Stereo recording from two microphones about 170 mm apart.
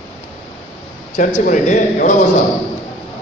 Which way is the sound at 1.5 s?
50° left (ahead or behind).